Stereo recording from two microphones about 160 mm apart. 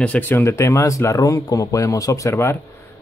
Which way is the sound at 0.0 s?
10° left (ahead or behind).